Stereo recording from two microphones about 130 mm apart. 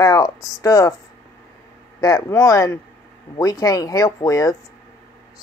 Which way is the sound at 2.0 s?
25° left (ahead or behind).